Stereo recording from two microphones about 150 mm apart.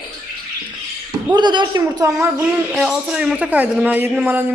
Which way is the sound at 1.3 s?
30° right (ahead or behind).